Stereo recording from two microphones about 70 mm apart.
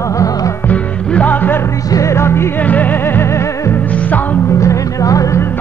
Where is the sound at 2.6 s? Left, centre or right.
Left.